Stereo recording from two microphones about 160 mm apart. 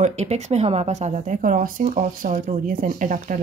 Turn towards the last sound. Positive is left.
turn(degrees=-55)  # may be behind; listen again after turning